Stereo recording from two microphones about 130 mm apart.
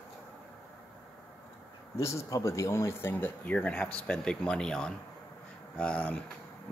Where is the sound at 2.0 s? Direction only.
20° left (ahead or behind).